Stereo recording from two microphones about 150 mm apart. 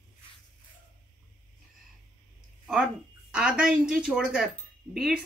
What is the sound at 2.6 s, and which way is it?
A woman's voice, 5° right (ahead or behind).